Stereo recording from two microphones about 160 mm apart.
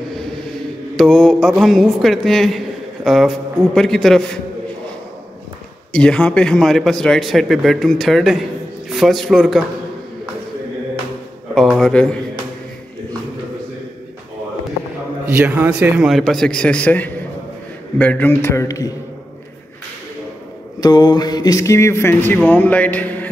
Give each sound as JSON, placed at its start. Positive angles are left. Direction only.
{"t": 0.9, "sound": "speech", "side_deg": 0}
{"t": 5.9, "sound": "a man's voice", "side_deg": 5}
{"t": 11.5, "sound": "speech", "side_deg": 0}
{"t": 15.2, "sound": "speech", "side_deg": -10}
{"t": 20.8, "sound": "speech", "side_deg": 25}